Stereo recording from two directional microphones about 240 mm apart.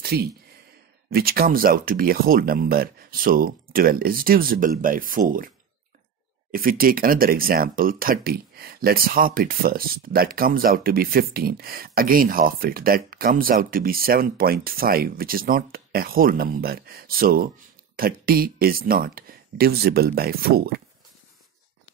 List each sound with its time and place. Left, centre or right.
0.0 s speech: right
6.5 s speech: right